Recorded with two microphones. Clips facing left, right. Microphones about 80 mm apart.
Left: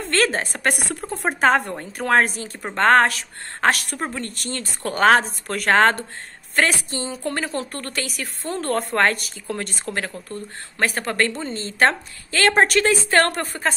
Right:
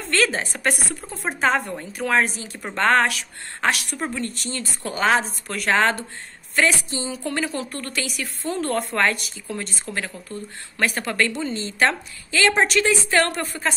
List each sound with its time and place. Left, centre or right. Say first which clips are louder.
0.1 s a woman's voice: left 1 dB; left
4.4 s a woman's voice: left 1 dB; left
10.8 s a woman's voice: left 1 dB; left